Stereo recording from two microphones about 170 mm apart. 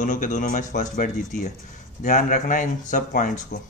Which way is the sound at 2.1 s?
45° left (ahead or behind).